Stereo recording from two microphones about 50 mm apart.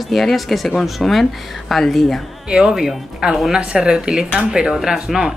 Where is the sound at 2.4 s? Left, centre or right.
Centre.